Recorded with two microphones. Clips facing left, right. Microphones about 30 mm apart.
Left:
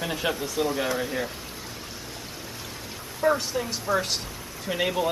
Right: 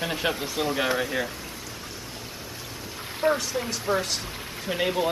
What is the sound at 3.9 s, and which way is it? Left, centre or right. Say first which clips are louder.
Speech: even; right.